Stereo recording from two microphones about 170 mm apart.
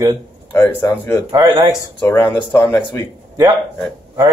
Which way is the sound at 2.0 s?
10° left (ahead or behind).